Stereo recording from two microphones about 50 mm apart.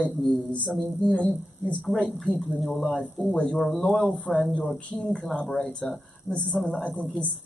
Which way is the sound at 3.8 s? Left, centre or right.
Centre.